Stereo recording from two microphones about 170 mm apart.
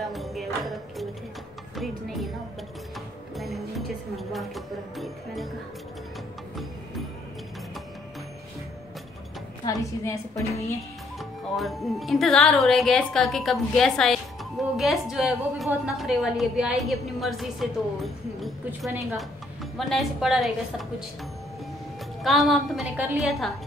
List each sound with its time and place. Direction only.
0.0 s music: centre (ahead or behind)
1.8 s a sound: centre (ahead or behind)
3.3 s music: centre (ahead or behind)
9.7 s a woman's voice: 20° left (ahead or behind)
11.1 s a woman's voice: centre (ahead or behind)
22.2 s speech: centre (ahead or behind)